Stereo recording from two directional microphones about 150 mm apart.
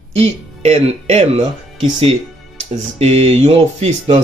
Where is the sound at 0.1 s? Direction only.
45° right (ahead or behind).